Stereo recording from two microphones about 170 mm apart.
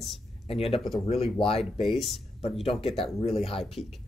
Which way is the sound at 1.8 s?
Centre (ahead or behind).